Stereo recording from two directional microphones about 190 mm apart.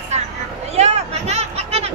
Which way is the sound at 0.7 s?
35° right (ahead or behind).